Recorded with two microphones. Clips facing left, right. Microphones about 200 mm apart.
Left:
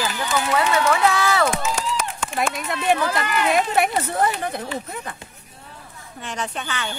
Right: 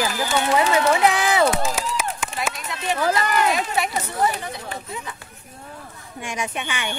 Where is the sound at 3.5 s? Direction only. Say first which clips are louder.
Left 4 dB; 55° left (ahead or behind).